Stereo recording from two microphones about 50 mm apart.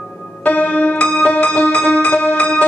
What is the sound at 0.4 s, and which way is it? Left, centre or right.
Music, left.